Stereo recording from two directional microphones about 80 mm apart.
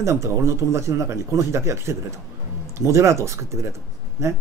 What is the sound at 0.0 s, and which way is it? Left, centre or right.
Speech, right.